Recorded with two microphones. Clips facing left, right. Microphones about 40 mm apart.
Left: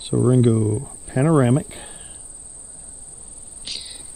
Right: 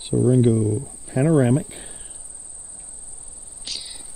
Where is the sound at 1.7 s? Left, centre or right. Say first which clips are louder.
Left 2 dB; left.